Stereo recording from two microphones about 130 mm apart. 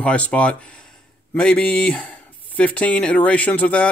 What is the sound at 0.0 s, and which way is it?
Speech, 10° left (ahead or behind).